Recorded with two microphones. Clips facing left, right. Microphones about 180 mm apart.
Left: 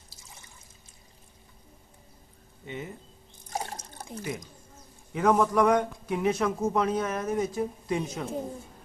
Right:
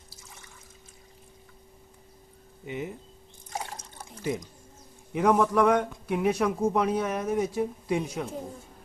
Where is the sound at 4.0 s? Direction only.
40° left (ahead or behind).